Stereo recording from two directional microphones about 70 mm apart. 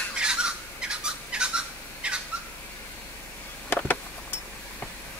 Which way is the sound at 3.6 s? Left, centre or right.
Left.